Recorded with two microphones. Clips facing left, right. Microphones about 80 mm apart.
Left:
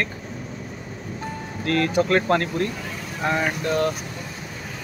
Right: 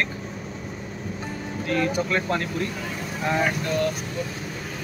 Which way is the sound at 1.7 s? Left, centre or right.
Left.